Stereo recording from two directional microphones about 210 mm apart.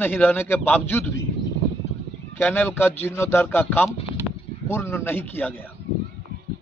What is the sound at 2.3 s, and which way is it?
A man's voice, 10° left (ahead or behind).